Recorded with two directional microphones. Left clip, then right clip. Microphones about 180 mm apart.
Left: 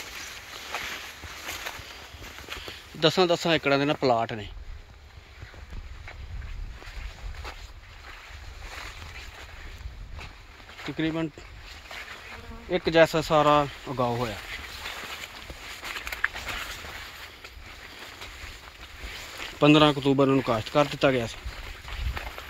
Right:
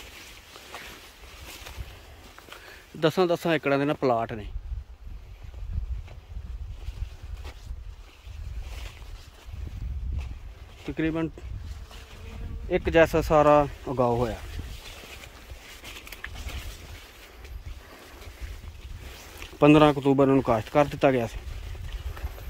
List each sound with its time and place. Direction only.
3.0 s speech: 10° right (ahead or behind)
10.9 s speech: 10° right (ahead or behind)
12.6 s speech: 10° right (ahead or behind)
19.6 s speech: 10° right (ahead or behind)